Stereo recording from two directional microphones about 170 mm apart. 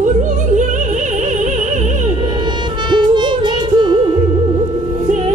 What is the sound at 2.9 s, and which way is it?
Music, 25° right (ahead or behind).